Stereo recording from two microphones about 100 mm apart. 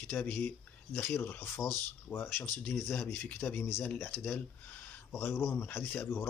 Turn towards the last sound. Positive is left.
turn(degrees=25)  # may be behind; listen again after turning